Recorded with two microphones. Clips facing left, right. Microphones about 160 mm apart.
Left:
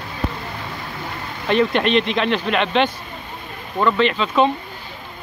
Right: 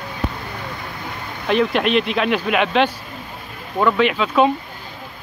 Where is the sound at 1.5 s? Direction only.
Centre (ahead or behind).